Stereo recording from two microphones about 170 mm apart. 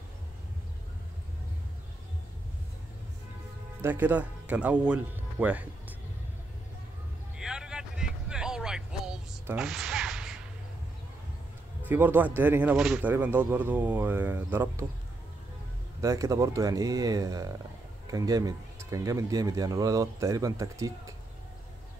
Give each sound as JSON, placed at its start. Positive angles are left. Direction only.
{"t": 3.8, "sound": "speech", "side_deg": -10}
{"t": 7.3, "sound": "vehicle", "side_deg": -5}
{"t": 11.8, "sound": "speech", "side_deg": -10}
{"t": 16.0, "sound": "speech", "side_deg": -20}